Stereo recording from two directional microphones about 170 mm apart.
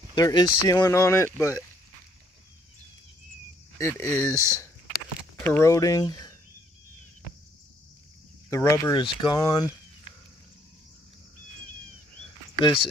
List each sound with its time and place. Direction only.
0.1 s speech: 25° left (ahead or behind)
3.7 s speech: 15° left (ahead or behind)
5.4 s speech: 15° left (ahead or behind)
8.5 s speech: 15° left (ahead or behind)
8.9 s speech: 25° left (ahead or behind)
12.5 s speech: 30° left (ahead or behind)